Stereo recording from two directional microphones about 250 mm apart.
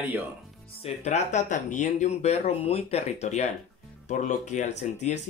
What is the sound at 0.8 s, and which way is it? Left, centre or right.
Speech, left.